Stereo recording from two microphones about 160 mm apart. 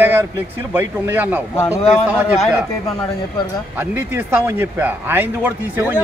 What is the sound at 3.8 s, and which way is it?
Speech, 10° right (ahead or behind).